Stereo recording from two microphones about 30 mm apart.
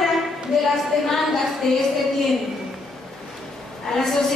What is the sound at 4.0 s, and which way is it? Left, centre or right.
Speech, centre.